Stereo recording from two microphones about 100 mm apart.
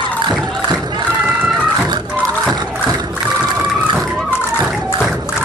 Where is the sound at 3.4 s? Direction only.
40° right (ahead or behind).